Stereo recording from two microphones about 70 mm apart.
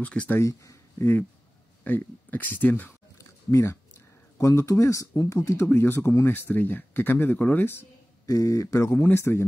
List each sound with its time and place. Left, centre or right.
0.0 s speech: centre
0.4 s speech: left
1.9 s speech: left
3.2 s a sound: left
4.4 s speech: left
8.3 s speech: left
8.9 s speech: left